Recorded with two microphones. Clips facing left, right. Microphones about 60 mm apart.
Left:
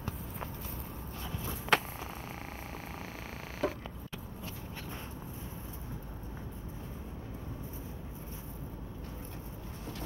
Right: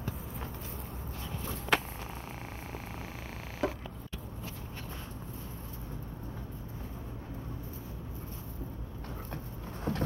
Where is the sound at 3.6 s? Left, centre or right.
Centre.